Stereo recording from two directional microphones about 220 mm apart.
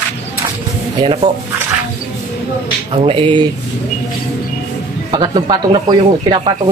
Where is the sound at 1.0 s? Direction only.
25° right (ahead or behind).